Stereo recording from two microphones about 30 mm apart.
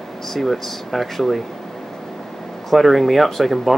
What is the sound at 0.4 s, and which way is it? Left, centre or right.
Speech, centre.